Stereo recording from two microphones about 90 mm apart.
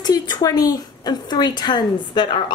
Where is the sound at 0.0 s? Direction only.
45° left (ahead or behind).